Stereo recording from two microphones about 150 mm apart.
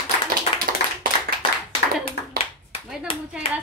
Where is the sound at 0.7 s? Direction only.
75° right (ahead or behind).